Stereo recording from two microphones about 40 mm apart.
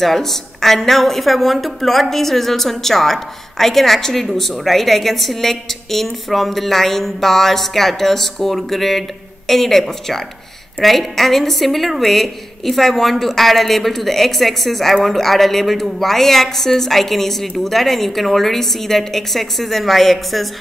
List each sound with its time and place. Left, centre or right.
0.0 s a woman's voice: centre